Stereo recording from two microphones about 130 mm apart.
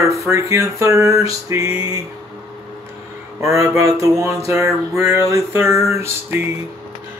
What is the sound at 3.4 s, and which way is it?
Speech, 25° right (ahead or behind).